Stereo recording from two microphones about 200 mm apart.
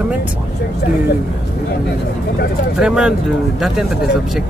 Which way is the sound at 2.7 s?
5° right (ahead or behind).